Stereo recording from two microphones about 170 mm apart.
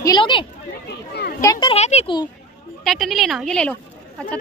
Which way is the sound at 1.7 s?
40° left (ahead or behind).